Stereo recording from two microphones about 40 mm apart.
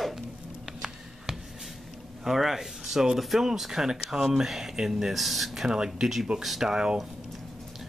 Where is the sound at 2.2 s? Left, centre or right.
Centre.